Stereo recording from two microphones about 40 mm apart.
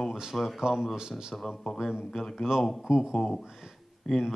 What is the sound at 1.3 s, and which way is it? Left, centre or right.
Speech, centre.